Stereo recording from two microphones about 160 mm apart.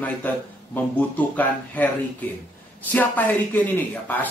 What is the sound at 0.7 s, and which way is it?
A man's voice, 10° left (ahead or behind).